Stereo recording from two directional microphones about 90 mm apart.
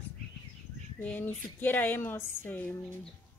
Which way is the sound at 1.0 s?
20° left (ahead or behind).